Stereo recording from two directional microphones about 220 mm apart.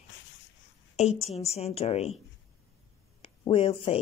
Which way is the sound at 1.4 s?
30° left (ahead or behind).